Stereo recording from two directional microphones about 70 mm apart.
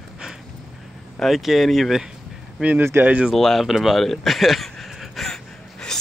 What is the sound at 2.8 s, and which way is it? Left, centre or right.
Speech, right.